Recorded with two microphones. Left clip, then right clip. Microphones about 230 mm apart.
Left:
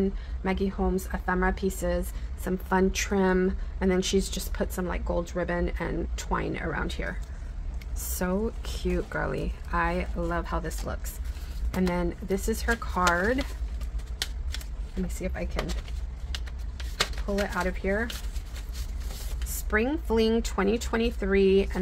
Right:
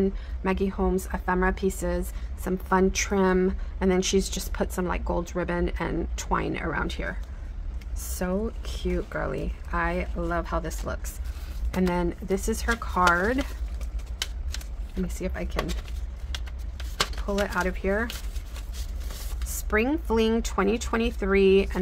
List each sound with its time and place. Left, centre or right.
0.0 s a woman's voice: centre
8.2 s a woman's voice: centre
15.0 s a woman's voice: centre
16.7 s a sound: centre
19.5 s a woman's voice: centre